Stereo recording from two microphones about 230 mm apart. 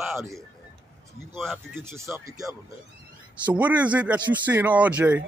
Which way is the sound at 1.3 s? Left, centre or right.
Centre.